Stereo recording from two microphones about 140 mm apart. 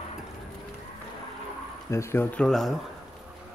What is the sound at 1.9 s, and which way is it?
Speech, 20° left (ahead or behind).